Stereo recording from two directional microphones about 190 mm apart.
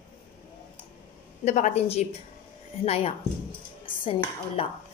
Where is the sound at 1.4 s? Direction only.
40° left (ahead or behind).